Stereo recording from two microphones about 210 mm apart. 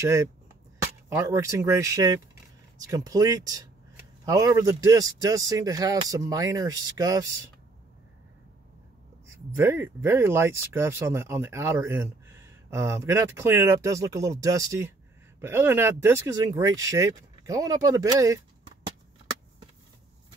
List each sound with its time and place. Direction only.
0.0 s speech: 15° right (ahead or behind)
9.6 s speech: 10° right (ahead or behind)